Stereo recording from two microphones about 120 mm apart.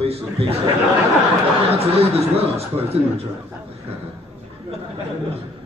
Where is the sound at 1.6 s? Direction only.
55° right (ahead or behind).